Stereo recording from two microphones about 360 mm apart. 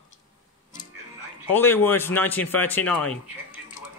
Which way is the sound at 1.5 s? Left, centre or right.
Centre.